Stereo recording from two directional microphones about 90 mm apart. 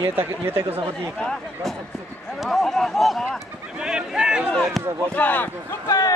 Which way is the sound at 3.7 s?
10° right (ahead or behind).